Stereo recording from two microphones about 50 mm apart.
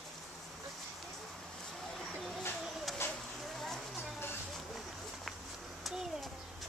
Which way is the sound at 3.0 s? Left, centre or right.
Left.